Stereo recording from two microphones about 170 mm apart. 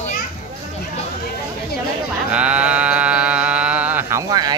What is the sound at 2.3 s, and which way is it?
Sheep, 5° right (ahead or behind).